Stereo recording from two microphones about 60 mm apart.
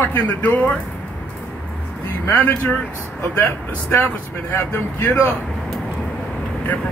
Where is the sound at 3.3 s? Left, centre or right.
Left.